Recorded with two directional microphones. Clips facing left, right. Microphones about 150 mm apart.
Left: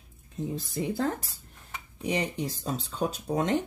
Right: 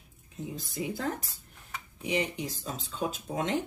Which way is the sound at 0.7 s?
35° left (ahead or behind).